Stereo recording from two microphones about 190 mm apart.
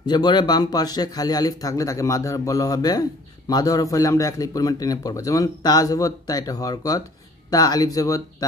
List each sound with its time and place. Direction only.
0.0 s speech: 25° left (ahead or behind)